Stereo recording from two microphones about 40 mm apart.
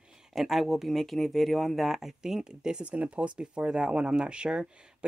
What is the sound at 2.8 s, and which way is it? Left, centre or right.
Speech, right.